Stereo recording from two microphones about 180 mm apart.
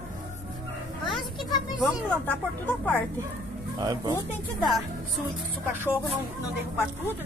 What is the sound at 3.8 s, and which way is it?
Speech, 20° right (ahead or behind).